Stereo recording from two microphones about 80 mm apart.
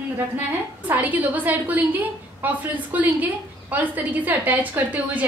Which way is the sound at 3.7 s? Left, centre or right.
Right.